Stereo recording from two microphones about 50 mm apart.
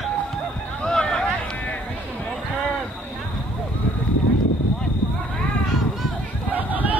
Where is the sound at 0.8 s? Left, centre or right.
Centre.